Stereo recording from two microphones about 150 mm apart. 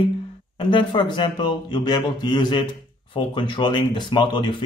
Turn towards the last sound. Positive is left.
turn(degrees=30)  # may be behind; listen again after turning